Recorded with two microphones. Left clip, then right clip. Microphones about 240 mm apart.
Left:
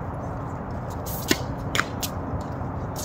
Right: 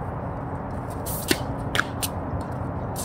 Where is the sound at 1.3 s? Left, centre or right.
Right.